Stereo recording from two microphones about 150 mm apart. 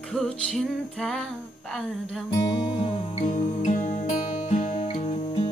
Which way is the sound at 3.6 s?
55° left (ahead or behind).